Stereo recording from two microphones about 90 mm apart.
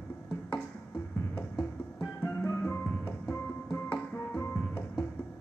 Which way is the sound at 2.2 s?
30° left (ahead or behind).